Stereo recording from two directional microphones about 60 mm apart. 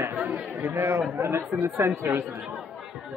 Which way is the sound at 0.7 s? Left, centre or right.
Right.